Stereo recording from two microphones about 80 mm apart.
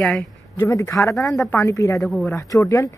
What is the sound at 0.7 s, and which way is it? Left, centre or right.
A man's voice, left.